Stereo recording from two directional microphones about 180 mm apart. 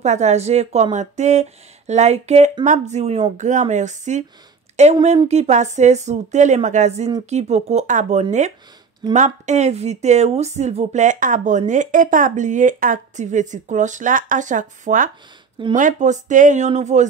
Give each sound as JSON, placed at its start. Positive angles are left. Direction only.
{"t": 0.0, "sound": "a woman's voice", "side_deg": -40}